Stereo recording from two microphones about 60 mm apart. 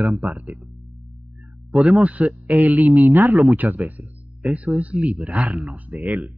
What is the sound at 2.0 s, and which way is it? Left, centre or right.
Speech, right.